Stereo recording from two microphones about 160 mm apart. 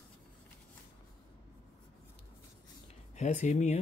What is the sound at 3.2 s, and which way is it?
Speech, 50° left (ahead or behind).